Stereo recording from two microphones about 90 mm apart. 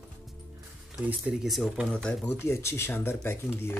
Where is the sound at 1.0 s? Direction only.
15° right (ahead or behind).